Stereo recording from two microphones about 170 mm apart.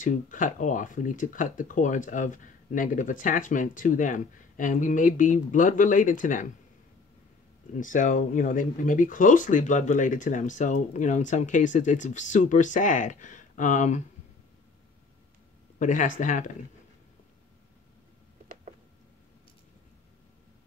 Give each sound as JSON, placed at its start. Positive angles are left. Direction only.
{"t": 0.0, "sound": "speech", "side_deg": 50}
{"t": 7.7, "sound": "speech", "side_deg": 50}
{"t": 15.8, "sound": "speech", "side_deg": 50}